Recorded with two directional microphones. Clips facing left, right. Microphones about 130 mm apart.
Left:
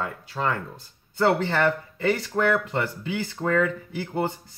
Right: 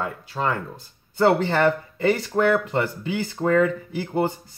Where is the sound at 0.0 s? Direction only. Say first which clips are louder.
Right 2 dB; 15° right (ahead or behind).